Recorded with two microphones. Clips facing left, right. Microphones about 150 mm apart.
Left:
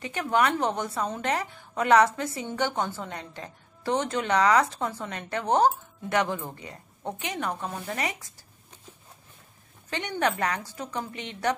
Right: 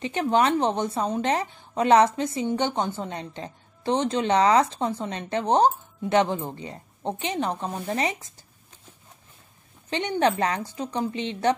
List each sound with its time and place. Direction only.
0.0 s a woman's voice: 25° right (ahead or behind)
9.8 s a woman's voice: 20° right (ahead or behind)